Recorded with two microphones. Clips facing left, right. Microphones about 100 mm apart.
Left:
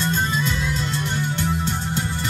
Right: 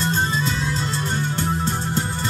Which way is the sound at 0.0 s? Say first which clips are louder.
Right 1 dB; 35° right (ahead or behind).